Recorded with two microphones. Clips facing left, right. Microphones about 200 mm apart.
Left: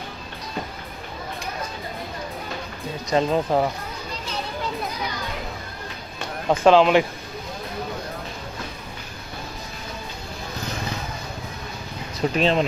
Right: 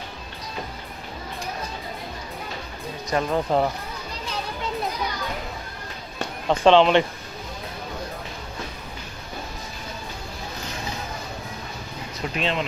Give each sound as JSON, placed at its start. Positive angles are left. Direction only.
{"t": 3.1, "sound": "speech", "side_deg": 20}
{"t": 3.4, "sound": "speech", "side_deg": 0}
{"t": 6.5, "sound": "speech", "side_deg": 5}
{"t": 12.4, "sound": "speech", "side_deg": 40}